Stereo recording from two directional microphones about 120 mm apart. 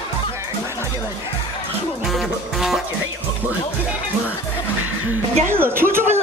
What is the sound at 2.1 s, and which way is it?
Music, centre (ahead or behind).